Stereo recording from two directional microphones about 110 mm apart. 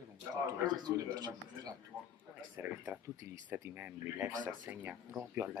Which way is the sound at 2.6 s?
20° right (ahead or behind).